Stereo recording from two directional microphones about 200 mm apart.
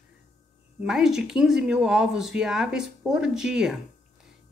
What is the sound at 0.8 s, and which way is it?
Speech, 5° right (ahead or behind).